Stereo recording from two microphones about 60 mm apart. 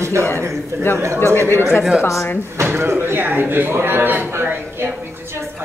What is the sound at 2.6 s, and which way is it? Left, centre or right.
Speech, right.